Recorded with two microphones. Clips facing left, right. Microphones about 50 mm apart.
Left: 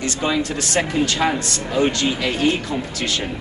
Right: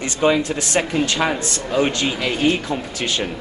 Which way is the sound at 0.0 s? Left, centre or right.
Right.